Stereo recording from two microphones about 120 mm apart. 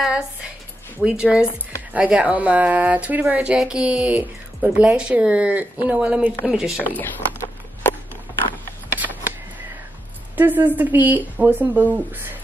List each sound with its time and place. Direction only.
0.0 s a woman's voice: 5° right (ahead or behind)
7.0 s a sound: 20° left (ahead or behind)
10.3 s speech: 15° right (ahead or behind)